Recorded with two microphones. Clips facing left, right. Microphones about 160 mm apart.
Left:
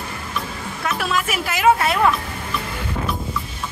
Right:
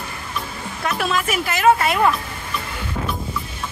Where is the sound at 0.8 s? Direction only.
Centre (ahead or behind).